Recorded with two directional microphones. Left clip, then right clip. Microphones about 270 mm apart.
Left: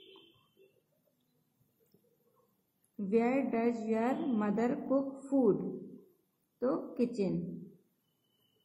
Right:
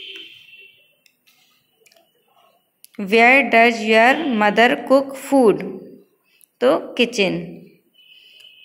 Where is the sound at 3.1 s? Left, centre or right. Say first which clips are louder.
Right 19 dB; right.